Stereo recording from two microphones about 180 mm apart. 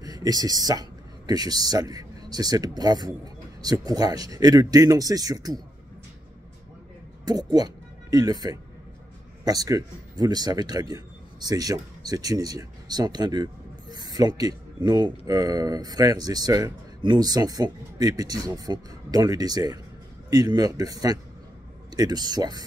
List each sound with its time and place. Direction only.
0.0 s speech: 20° right (ahead or behind)
7.2 s speech: 20° right (ahead or behind)